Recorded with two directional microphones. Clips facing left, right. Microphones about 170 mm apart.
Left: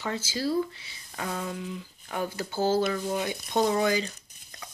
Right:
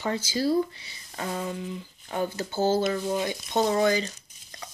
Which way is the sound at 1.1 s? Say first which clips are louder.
Right 2 dB; 20° right (ahead or behind).